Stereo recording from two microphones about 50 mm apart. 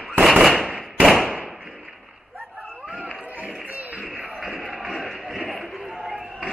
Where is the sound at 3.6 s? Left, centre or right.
Right.